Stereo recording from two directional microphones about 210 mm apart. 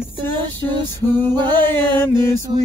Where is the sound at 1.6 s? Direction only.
10° left (ahead or behind).